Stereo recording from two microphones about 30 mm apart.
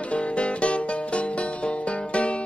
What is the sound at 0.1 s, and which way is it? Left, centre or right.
Music, left.